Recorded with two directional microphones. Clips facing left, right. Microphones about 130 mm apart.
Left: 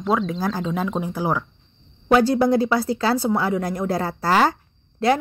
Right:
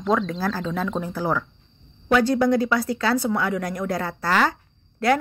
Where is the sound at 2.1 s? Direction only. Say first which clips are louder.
Left 2 dB; 30° left (ahead or behind).